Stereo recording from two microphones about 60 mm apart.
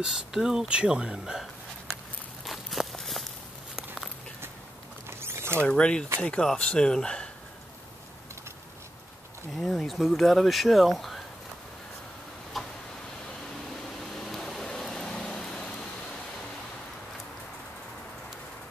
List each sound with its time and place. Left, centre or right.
0.0 s speech: centre
2.4 s walk: centre
5.2 s boat: right
5.6 s speech: centre
9.6 s speech: centre
12.6 s tick-tock: centre
13.8 s a sound: centre